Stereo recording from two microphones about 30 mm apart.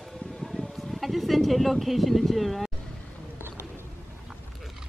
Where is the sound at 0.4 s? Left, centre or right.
Centre.